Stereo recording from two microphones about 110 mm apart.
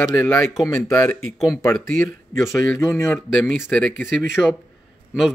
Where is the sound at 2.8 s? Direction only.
25° left (ahead or behind).